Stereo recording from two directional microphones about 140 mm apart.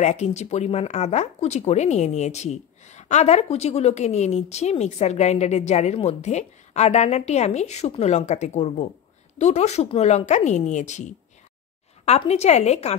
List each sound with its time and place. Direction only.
0.0 s speech: 55° left (ahead or behind)